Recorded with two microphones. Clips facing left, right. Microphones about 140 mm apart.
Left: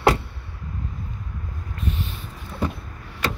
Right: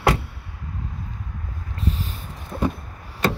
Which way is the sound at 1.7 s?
35° right (ahead or behind).